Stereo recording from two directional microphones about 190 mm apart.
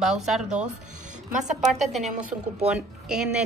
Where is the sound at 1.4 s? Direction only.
40° right (ahead or behind).